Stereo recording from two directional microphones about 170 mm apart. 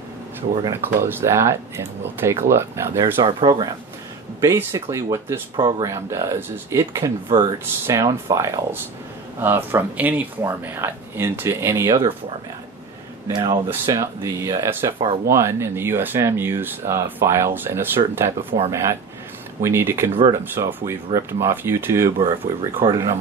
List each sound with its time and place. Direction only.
0.8 s speech: 10° right (ahead or behind)
3.2 s speech: 30° right (ahead or behind)
13.3 s speech: 25° right (ahead or behind)
13.7 s speech: 15° right (ahead or behind)
22.2 s speech: 30° right (ahead or behind)